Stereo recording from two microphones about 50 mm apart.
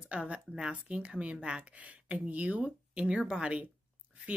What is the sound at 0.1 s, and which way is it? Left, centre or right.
A woman's voice, right.